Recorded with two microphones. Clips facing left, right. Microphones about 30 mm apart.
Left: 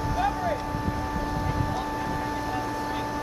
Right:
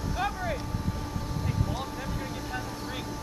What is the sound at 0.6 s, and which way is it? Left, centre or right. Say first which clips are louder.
Vehicle: left 6 dB; left.